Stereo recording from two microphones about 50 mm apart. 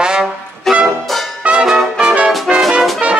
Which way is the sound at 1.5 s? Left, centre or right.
Centre.